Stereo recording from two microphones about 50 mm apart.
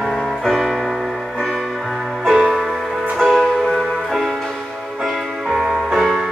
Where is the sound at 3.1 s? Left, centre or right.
Centre.